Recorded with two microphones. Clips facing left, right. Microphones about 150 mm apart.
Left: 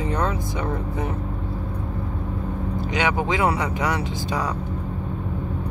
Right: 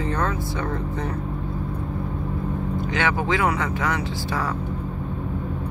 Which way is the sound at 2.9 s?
15° left (ahead or behind).